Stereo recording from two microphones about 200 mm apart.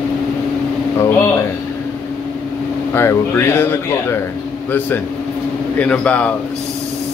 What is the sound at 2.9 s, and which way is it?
Speech, 10° left (ahead or behind).